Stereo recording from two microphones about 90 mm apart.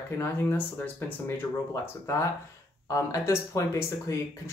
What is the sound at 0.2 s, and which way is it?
Speech, 25° left (ahead or behind).